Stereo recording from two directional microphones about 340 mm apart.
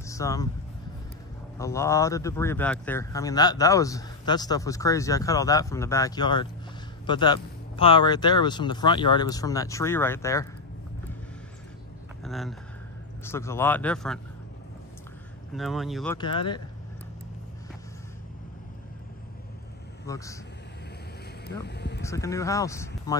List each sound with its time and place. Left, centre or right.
0.0 s vehicle: centre
1.6 s speech: centre
12.3 s speech: centre
15.5 s speech: centre
16.2 s speech: centre
20.1 s speech: centre
21.6 s a sound: left
22.0 s speech: centre